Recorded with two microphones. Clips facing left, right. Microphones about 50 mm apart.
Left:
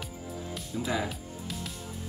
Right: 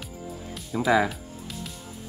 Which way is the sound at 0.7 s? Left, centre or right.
Right.